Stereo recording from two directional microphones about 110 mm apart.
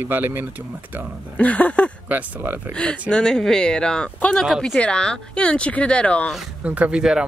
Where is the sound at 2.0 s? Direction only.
15° right (ahead or behind).